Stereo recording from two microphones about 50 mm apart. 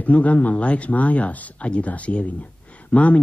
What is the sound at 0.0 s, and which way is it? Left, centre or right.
Speech, left.